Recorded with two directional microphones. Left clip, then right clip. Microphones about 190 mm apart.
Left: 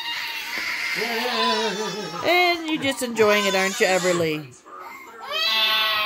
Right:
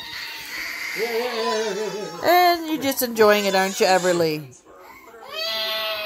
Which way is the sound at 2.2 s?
35° right (ahead or behind).